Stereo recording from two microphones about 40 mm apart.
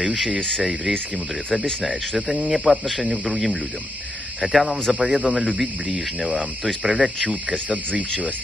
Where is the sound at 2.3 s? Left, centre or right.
Centre.